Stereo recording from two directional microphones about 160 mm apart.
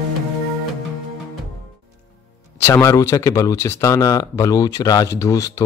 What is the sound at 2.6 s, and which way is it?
Speech, 15° left (ahead or behind).